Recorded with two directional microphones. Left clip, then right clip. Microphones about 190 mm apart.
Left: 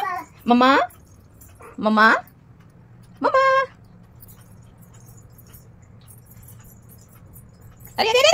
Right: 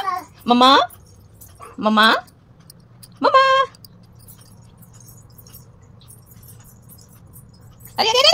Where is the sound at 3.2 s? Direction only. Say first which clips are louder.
Right 3 dB; 25° right (ahead or behind).